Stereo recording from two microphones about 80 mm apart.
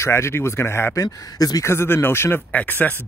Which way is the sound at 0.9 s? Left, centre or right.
Left.